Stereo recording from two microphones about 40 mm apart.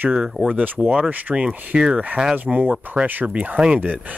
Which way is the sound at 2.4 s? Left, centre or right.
Right.